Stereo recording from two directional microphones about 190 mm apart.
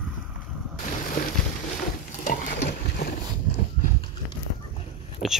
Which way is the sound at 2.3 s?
50° left (ahead or behind).